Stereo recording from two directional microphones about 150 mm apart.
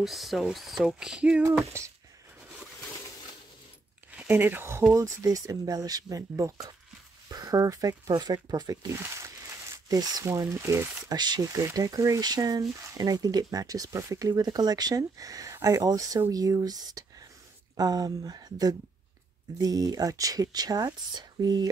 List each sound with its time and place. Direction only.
0.0 s speech: centre (ahead or behind)
4.1 s speech: 10° right (ahead or behind); by 21.6 s 30° right (ahead or behind)